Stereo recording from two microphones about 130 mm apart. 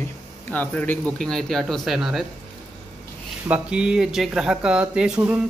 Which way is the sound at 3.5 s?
5° right (ahead or behind).